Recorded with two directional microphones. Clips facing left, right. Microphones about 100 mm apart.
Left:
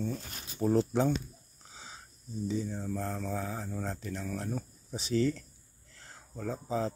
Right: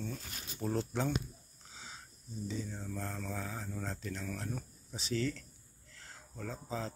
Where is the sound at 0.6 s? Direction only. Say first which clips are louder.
Left 8 dB; 35° left (ahead or behind).